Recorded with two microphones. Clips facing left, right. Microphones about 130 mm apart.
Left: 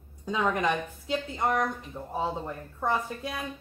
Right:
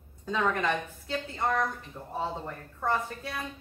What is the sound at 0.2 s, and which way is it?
A woman's voice, 15° left (ahead or behind).